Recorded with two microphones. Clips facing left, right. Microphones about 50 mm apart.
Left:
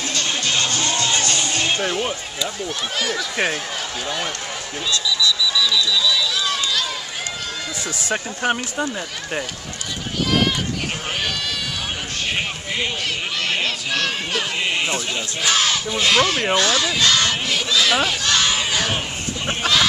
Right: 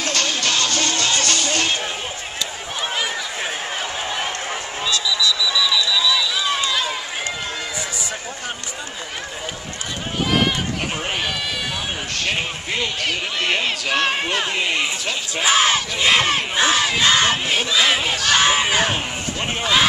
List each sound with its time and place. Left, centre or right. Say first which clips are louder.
0.0 s music: right 3 dB; right
0.8 s music: even; left
5.5 s run: even; centre
8.0 s speech: left 6 dB; left
13.0 s speech: right 2 dB; right
15.4 s speech: right 3 dB; right